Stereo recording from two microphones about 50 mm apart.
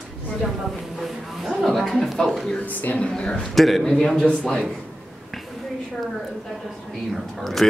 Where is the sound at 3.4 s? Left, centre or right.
Centre.